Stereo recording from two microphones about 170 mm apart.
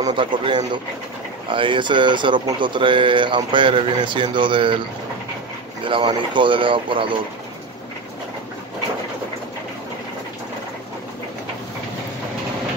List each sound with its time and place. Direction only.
0.0 s speech: 30° right (ahead or behind)
5.9 s speech: 30° right (ahead or behind)